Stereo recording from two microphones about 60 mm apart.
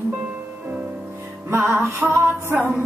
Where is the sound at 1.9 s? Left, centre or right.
Right.